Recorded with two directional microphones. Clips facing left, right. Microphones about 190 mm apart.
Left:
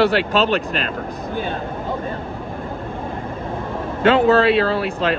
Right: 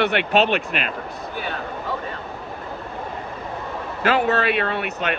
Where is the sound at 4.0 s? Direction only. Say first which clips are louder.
Left 6 dB; 25° left (ahead or behind).